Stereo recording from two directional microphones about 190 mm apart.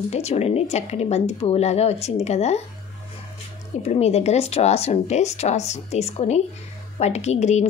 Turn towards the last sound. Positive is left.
turn(degrees=35)  # may be behind; listen again after turning